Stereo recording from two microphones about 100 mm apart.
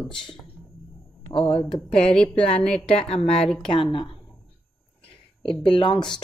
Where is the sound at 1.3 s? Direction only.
65° left (ahead or behind).